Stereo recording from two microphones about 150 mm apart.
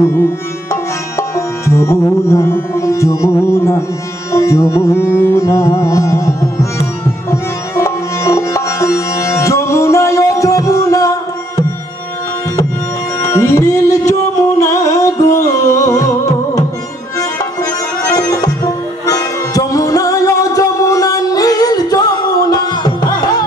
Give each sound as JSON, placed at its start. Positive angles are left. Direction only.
{"t": 0.0, "sound": "music", "side_deg": 15}
{"t": 1.7, "sound": "music", "side_deg": 20}
{"t": 13.2, "sound": "music", "side_deg": 20}
{"t": 18.1, "sound": "music", "side_deg": 25}
{"t": 22.5, "sound": "tabla", "side_deg": 25}